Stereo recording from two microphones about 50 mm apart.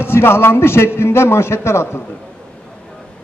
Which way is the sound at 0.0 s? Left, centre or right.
Left.